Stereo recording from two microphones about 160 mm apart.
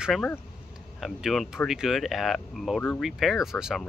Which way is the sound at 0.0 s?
5° left (ahead or behind).